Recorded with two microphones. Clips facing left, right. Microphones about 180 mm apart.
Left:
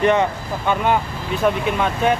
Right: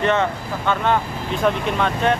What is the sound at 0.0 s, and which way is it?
Speech, 15° left (ahead or behind).